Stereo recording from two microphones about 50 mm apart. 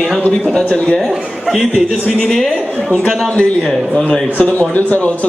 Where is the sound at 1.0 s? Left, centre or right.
Centre.